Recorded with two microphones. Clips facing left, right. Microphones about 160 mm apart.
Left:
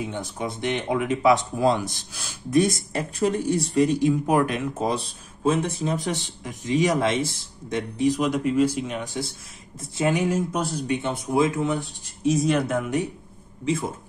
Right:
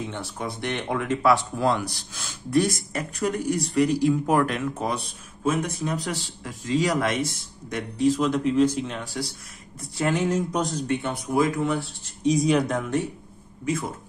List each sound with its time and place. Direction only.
0.1 s speech: 20° left (ahead or behind)
2.6 s speech: 25° left (ahead or behind)
12.2 s speech: centre (ahead or behind)
13.7 s speech: 25° left (ahead or behind)